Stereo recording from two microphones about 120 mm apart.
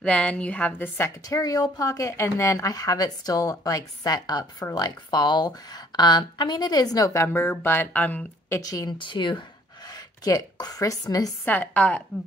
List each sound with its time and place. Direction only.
0.0 s a woman's voice: 10° left (ahead or behind)
8.5 s a woman's voice: 30° left (ahead or behind)
8.9 s speech: 40° left (ahead or behind)
9.8 s speech: 30° left (ahead or behind)
11.4 s a woman's voice: 15° left (ahead or behind)